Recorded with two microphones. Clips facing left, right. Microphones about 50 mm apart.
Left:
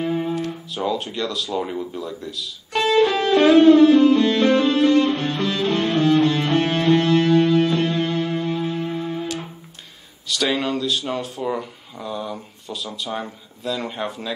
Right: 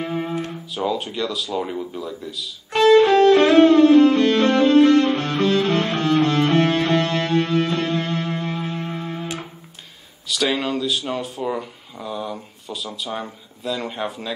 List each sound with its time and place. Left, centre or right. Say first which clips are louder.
0.1 s guitar: left 2 dB; right
0.7 s speech: right 1 dB; centre
2.9 s music: right 5 dB; right
10.2 s speech: even; centre